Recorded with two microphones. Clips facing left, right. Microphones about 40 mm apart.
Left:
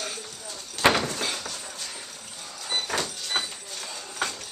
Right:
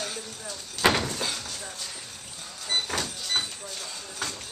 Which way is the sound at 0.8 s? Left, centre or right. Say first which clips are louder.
Left 2 dB; centre.